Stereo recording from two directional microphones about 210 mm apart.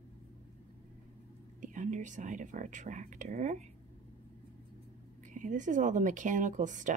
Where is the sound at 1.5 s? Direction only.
35° right (ahead or behind).